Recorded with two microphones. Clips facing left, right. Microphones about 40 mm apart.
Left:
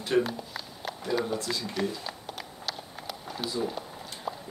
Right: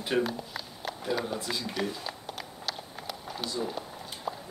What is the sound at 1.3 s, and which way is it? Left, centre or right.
Speech, centre.